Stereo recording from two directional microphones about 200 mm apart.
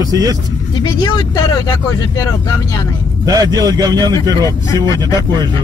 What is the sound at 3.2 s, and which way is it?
Speech, 20° right (ahead or behind).